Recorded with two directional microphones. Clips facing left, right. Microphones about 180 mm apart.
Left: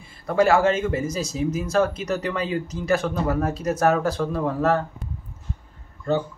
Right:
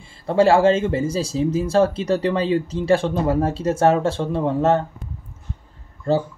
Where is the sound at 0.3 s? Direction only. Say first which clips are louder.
Right 4 dB; 30° right (ahead or behind).